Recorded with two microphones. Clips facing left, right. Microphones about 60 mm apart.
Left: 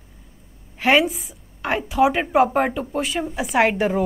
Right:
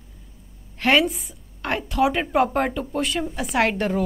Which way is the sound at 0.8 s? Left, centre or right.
Centre.